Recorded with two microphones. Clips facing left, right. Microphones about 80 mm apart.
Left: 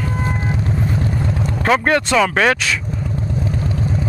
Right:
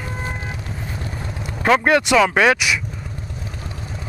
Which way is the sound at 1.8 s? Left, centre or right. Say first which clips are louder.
Even; centre.